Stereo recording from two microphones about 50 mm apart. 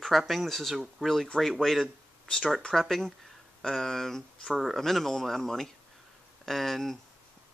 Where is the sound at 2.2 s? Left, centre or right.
Centre.